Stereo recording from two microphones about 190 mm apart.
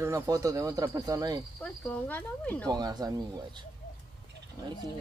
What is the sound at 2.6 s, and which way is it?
Speech, 20° right (ahead or behind).